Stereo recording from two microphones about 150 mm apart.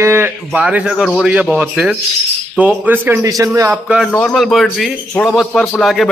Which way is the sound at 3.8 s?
5° right (ahead or behind).